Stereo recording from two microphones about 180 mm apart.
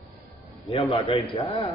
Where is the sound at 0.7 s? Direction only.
30° left (ahead or behind).